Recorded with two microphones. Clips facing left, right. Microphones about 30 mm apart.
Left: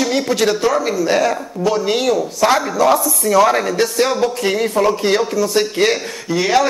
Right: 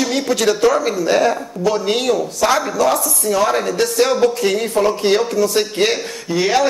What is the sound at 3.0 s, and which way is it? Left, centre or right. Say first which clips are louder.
Speech: left 3 dB; left.